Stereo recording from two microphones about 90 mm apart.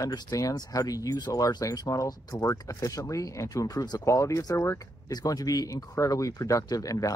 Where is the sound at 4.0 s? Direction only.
35° left (ahead or behind).